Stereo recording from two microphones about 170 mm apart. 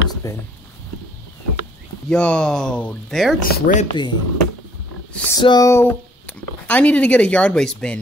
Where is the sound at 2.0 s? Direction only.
5° left (ahead or behind).